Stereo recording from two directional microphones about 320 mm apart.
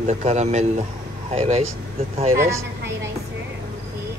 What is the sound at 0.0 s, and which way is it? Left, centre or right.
A man's voice, right.